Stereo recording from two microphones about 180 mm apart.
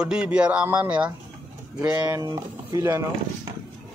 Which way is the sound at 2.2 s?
20° right (ahead or behind).